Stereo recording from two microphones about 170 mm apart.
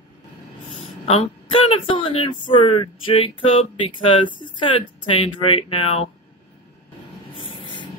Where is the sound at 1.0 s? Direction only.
35° left (ahead or behind).